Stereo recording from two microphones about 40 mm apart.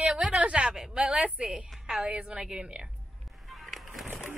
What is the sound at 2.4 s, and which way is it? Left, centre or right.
Speech, centre.